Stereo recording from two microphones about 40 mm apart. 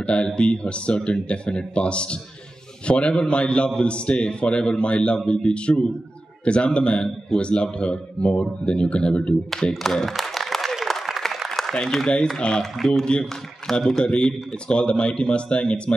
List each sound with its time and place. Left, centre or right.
0.0 s a man's voice: left
9.5 s a sound: centre
11.7 s a man's voice: centre